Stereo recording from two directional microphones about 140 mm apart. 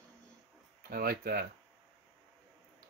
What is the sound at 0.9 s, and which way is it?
Speech, 90° right.